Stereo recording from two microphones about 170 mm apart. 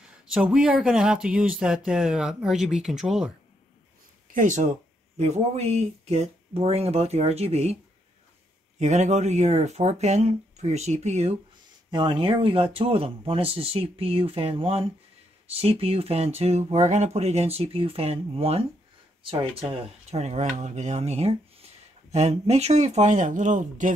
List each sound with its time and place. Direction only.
0.0 s speech: 5° right (ahead or behind)
4.3 s speech: 50° right (ahead or behind)
8.7 s speech: 40° right (ahead or behind)
11.9 s speech: 30° right (ahead or behind); by 23.9 s 45° right (ahead or behind)